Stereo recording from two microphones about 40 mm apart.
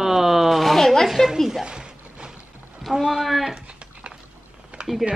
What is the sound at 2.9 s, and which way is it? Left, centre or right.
Speech, centre.